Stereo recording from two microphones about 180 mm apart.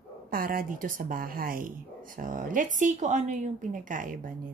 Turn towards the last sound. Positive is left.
turn(degrees=-50)  # may be behind; listen again after turning